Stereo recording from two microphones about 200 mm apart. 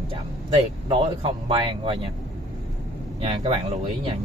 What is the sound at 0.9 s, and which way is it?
Speech, 25° right (ahead or behind).